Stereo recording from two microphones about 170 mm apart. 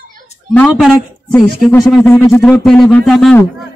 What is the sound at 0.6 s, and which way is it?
Speech, centre (ahead or behind).